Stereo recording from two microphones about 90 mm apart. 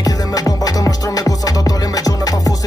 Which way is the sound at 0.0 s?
45° left (ahead or behind).